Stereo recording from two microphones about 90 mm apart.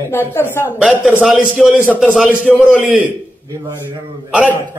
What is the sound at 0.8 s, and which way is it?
Speech, 10° right (ahead or behind).